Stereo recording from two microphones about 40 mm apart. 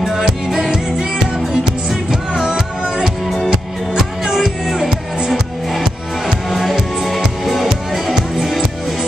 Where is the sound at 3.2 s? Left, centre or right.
Centre.